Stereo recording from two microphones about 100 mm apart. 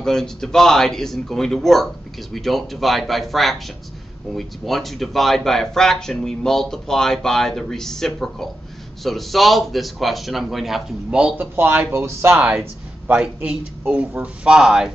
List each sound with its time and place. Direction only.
0.0 s speech: 5° left (ahead or behind); by 11.4 s 10° right (ahead or behind)
11.5 s speech: 25° right (ahead or behind); by 14.9 s 5° right (ahead or behind)